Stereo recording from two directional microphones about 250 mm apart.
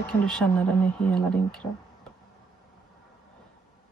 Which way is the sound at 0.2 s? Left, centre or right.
Centre.